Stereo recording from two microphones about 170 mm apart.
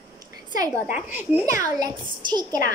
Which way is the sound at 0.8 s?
10° right (ahead or behind).